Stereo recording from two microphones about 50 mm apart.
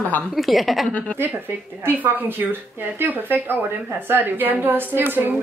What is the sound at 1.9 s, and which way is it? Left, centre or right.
Speech, right.